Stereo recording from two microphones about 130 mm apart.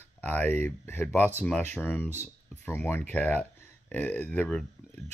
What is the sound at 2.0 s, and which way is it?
Speech, 15° right (ahead or behind).